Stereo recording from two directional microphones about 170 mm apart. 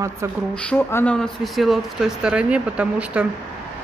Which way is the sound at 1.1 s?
Centre (ahead or behind).